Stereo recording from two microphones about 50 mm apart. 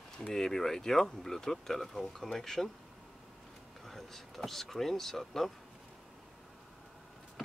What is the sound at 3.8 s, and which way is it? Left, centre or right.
Speech, centre.